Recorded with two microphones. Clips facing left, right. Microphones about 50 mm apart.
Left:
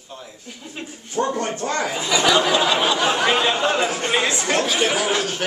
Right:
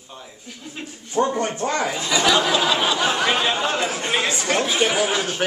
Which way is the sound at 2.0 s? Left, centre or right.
Centre.